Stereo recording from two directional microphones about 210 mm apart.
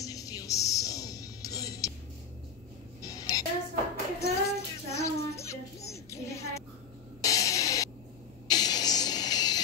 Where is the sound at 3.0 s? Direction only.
15° left (ahead or behind).